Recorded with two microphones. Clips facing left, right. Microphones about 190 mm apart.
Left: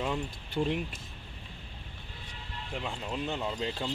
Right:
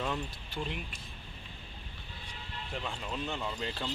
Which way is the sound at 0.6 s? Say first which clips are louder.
Left 8 dB; 25° left (ahead or behind).